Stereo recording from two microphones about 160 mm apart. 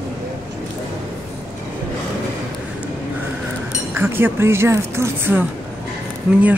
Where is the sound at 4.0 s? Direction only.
15° right (ahead or behind).